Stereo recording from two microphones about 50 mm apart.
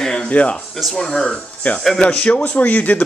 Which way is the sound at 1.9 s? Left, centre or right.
Left.